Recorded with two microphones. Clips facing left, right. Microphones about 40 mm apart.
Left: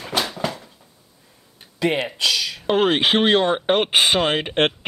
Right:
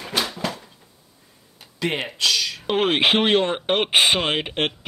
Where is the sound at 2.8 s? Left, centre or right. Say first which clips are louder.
Left 1 dB; right.